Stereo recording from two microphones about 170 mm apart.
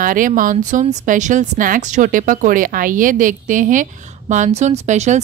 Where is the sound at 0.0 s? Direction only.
50° right (ahead or behind).